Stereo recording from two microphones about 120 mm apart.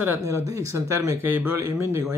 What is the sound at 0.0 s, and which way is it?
Speech, 25° right (ahead or behind).